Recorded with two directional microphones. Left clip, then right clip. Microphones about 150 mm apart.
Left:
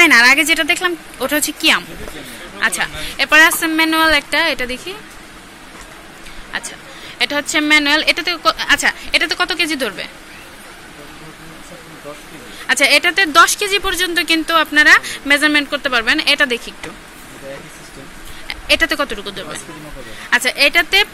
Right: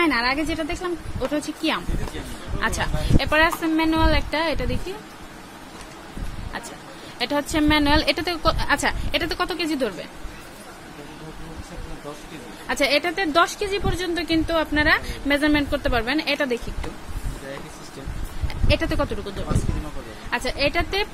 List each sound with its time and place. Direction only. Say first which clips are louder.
0.0 s speech: left 12 dB; centre (ahead or behind)
2.6 s speech: left 7 dB; 20° right (ahead or behind)
3.3 s speech: left 9 dB; 5° right (ahead or behind)
6.5 s speech: left 9 dB; 20° right (ahead or behind)
12.6 s speech: left 9 dB; 15° right (ahead or behind)
18.5 s speech: left 9 dB; 10° right (ahead or behind)